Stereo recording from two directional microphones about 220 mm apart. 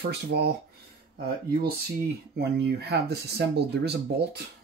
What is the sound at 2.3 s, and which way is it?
Speech, 50° right (ahead or behind).